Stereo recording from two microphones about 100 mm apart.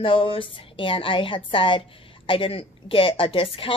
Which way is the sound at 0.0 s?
60° left (ahead or behind).